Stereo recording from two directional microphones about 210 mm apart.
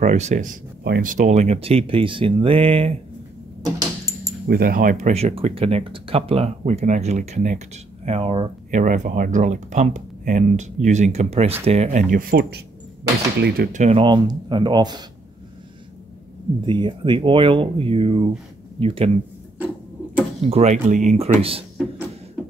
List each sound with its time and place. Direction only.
0.0 s speech: 35° right (ahead or behind)
3.6 s a sound: 15° right (ahead or behind)
4.5 s speech: 45° right (ahead or behind); by 15.0 s 20° right (ahead or behind)
16.6 s speech: 20° right (ahead or behind)
20.4 s speech: 30° right (ahead or behind)